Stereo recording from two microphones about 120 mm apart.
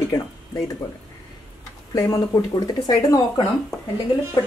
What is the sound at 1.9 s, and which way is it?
A woman's voice, 30° left (ahead or behind).